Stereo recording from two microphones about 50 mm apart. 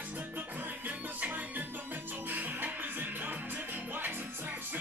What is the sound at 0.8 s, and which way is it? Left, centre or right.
Music, right.